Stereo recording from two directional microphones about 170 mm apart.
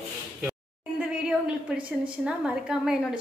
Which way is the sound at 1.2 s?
5° right (ahead or behind).